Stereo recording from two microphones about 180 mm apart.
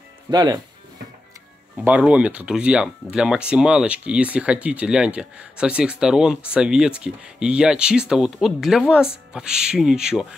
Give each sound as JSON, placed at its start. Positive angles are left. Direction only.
{"t": 0.3, "sound": "speech", "side_deg": -20}
{"t": 1.9, "sound": "speech", "side_deg": -5}